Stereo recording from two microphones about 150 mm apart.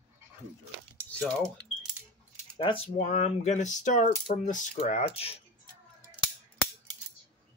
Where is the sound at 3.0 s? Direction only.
50° left (ahead or behind).